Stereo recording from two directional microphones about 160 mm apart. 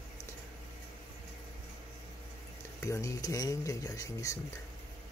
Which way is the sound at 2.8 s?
20° left (ahead or behind).